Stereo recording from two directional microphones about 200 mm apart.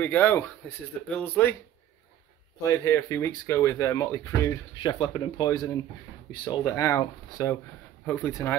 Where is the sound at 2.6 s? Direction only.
15° left (ahead or behind).